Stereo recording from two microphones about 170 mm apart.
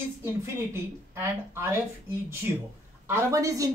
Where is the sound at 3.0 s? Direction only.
15° right (ahead or behind).